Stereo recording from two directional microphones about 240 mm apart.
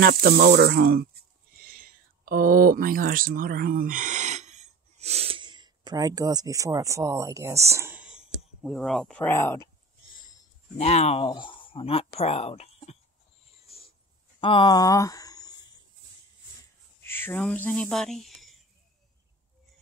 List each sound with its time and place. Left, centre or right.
0.0 s speech: right; by 9.7 s centre
10.8 s speech: left
13.7 s a sound: left
14.4 s speech: left
17.0 s speech: centre